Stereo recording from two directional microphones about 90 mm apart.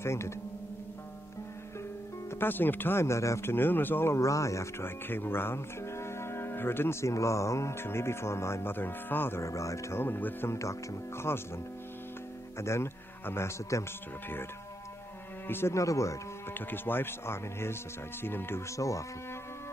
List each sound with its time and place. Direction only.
0.0 s speech: 30° left (ahead or behind)
2.4 s speech: 20° left (ahead or behind)
12.5 s speech: 30° left (ahead or behind)
15.4 s speech: 25° left (ahead or behind)
16.5 s speech: 25° left (ahead or behind)
18.8 s speech: 35° left (ahead or behind)